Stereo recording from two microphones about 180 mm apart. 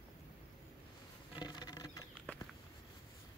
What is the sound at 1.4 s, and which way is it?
Patter, 25° left (ahead or behind).